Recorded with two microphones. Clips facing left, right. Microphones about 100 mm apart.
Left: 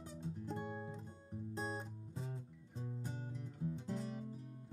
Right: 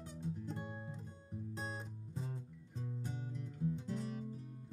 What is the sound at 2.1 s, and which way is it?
Music, 5° left (ahead or behind).